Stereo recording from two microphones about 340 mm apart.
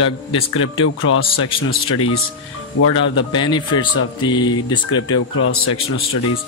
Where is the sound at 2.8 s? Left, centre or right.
Left.